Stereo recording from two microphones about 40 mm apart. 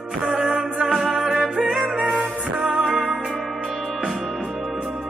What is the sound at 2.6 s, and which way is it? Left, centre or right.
Music, centre.